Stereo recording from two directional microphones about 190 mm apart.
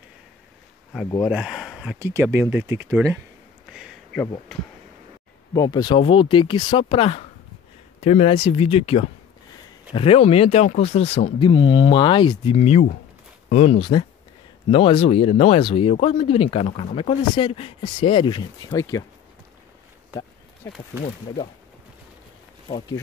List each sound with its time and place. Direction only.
1.2 s speech: 5° right (ahead or behind)
3.7 s a sound: 5° right (ahead or behind)
5.5 s speech: 20° left (ahead or behind)
20.6 s speech: 15° left (ahead or behind)